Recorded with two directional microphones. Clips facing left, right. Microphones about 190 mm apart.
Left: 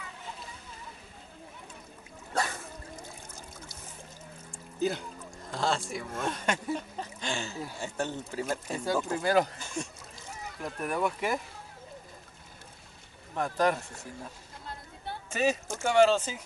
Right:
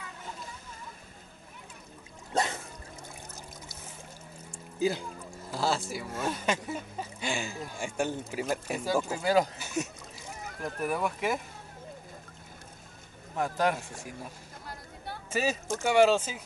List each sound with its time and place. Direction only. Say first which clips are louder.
2.3 s a sound: right 2 dB; 20° right (ahead or behind)
4.7 s speech: right 1 dB; 5° right (ahead or behind)
13.4 s speech: left 1 dB; 5° right (ahead or behind)
15.3 s speech: left 1 dB; 5° right (ahead or behind)